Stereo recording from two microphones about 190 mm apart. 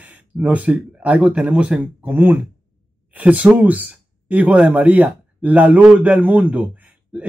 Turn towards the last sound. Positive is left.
turn(degrees=-5)  # may be behind; listen again after turning